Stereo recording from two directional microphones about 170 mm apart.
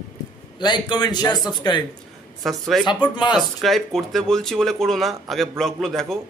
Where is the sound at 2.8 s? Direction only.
25° left (ahead or behind).